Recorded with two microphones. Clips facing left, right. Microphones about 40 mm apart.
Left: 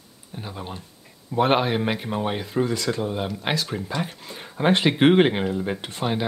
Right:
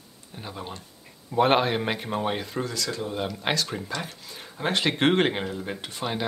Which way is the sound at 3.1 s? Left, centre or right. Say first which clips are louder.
Left 1 dB; centre.